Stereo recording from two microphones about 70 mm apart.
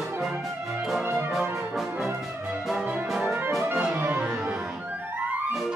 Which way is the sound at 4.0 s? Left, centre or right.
Right.